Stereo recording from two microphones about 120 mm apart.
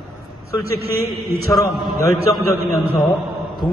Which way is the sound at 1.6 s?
25° left (ahead or behind).